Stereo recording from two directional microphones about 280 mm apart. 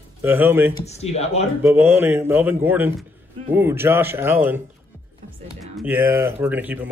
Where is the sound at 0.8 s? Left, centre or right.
Left.